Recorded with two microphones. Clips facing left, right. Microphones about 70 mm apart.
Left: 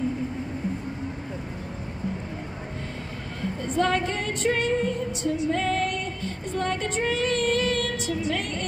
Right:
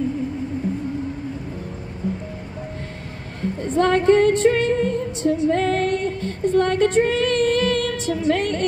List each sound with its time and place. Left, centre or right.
3.6 s music: right